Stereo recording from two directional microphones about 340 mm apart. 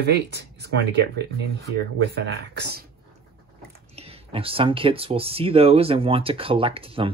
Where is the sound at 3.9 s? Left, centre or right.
Centre.